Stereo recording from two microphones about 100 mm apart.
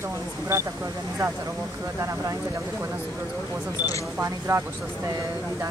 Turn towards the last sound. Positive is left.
turn(degrees=-25)  # may be behind; listen again after turning